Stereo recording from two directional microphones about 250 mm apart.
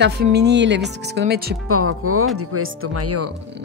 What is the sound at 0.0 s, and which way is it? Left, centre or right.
A woman's voice, right.